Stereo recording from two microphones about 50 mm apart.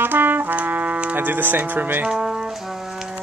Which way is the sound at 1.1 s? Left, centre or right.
Right.